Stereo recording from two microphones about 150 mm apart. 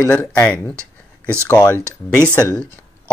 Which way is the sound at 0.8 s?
15° right (ahead or behind).